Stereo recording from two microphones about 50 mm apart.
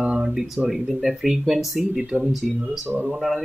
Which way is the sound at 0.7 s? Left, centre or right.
Centre.